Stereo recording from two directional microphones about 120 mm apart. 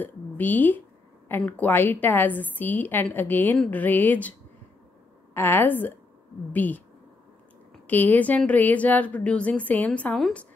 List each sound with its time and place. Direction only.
0.0 s a woman's voice: 15° left (ahead or behind)
7.8 s a woman's voice: 15° left (ahead or behind)